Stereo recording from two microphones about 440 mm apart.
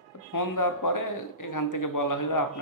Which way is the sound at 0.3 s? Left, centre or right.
Left.